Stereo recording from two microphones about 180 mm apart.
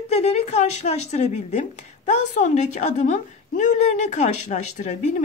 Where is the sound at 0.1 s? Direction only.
35° left (ahead or behind).